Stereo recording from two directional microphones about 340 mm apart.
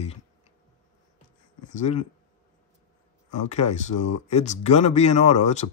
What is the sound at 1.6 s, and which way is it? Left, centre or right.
Speech, left.